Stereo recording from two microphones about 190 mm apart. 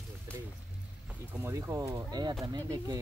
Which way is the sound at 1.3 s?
10° right (ahead or behind).